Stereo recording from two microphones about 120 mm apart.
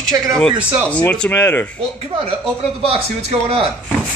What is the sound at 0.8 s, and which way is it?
Speech, 10° left (ahead or behind).